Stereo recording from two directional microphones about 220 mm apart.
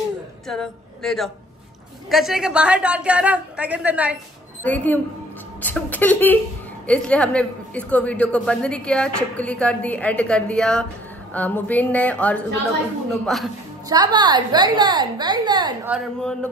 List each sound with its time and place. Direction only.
0.5 s a woman's voice: centre (ahead or behind)
4.6 s a woman's voice: 10° left (ahead or behind)
13.8 s a woman's voice: 20° right (ahead or behind)
15.9 s a woman's voice: 5° left (ahead or behind)